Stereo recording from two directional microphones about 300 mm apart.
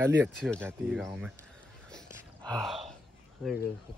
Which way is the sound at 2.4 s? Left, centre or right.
Centre.